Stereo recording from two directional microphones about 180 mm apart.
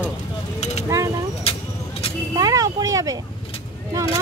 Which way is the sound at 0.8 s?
15° right (ahead or behind).